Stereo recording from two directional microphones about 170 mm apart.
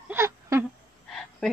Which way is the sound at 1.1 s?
Centre (ahead or behind).